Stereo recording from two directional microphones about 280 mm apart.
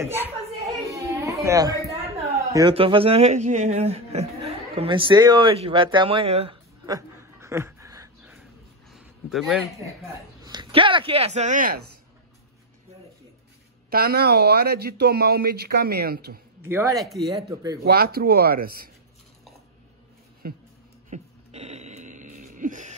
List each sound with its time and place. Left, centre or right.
0.0 s speech: centre
0.8 s a sound: centre
2.5 s a man's voice: centre
4.5 s chuckle: centre
8.9 s a man's voice: centre; by 11.9 s right
13.8 s speech: right
16.6 s speech: centre
17.8 s speech: right
20.4 s speech: right
21.1 s a sound: right